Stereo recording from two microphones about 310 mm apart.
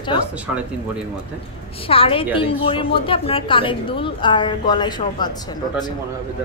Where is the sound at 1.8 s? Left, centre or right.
Centre.